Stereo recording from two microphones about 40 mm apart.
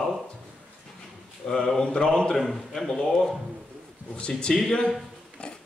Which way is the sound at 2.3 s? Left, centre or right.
Centre.